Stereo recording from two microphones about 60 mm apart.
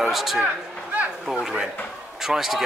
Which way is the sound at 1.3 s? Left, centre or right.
Centre.